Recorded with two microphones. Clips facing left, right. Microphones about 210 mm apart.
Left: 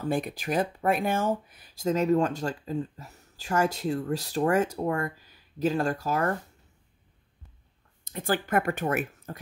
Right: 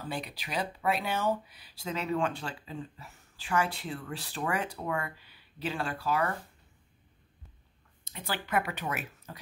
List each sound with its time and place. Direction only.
0.0 s speech: 50° left (ahead or behind)
8.0 s speech: 50° left (ahead or behind)